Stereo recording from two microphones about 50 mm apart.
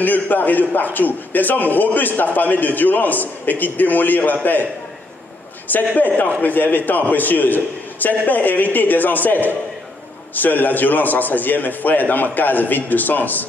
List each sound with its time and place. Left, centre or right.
0.0 s a man's voice: left
5.7 s a man's voice: left